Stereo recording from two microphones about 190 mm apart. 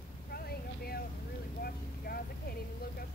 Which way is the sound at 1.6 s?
55° left (ahead or behind).